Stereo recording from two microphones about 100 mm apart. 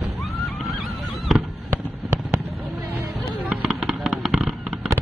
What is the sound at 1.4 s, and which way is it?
Fireworks, 25° right (ahead or behind).